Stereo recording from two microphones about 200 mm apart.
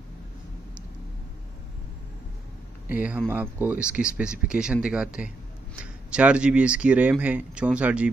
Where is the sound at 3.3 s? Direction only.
10° right (ahead or behind).